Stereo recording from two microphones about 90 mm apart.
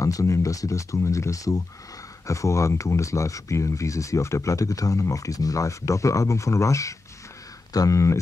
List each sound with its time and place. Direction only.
0.0 s speech: 35° left (ahead or behind)